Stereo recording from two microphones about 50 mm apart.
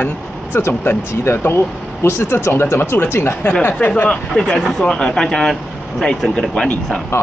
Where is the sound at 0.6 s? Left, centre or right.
Left.